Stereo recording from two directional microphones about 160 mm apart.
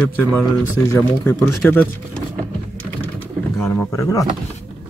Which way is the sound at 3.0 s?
15° left (ahead or behind).